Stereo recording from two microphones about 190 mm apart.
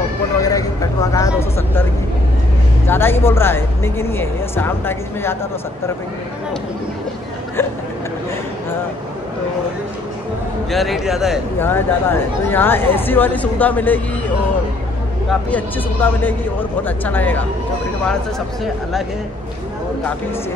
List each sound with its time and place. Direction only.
0.4 s speech: 15° left (ahead or behind)
2.9 s speech: 10° left (ahead or behind)
10.7 s speech: centre (ahead or behind)
11.6 s speech: 10° left (ahead or behind)
15.2 s speech: 10° left (ahead or behind)